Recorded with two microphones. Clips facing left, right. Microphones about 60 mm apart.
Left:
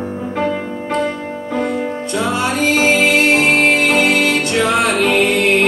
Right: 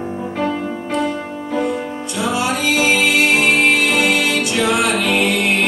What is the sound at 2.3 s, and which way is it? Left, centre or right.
Music, left.